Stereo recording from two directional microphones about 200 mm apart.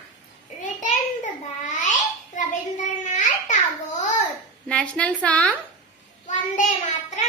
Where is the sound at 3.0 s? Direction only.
40° left (ahead or behind).